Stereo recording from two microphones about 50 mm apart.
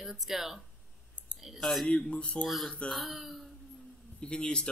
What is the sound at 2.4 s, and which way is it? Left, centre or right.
A woman's voice, centre.